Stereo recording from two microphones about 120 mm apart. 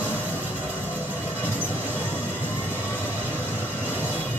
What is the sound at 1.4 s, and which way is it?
Music, 15° right (ahead or behind).